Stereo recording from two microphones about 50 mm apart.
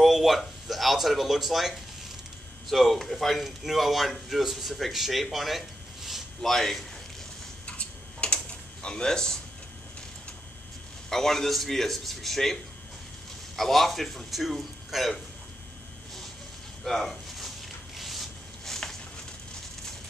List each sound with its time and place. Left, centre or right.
0.0 s a man's voice: centre
7.6 s tick-tock: left
8.8 s speech: centre
11.1 s a man's voice: centre
13.6 s a man's voice: centre
16.8 s a sound: centre